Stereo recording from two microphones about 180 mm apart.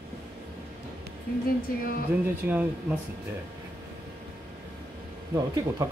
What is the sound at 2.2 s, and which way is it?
Speech, 10° right (ahead or behind).